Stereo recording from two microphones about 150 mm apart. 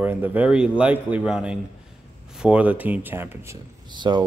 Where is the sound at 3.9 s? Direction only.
30° right (ahead or behind).